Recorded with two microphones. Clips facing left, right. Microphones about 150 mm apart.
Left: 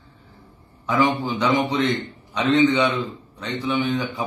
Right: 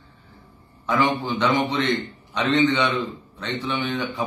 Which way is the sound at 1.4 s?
20° left (ahead or behind).